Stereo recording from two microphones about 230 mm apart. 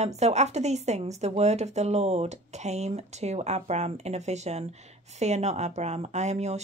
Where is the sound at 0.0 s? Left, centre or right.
Right.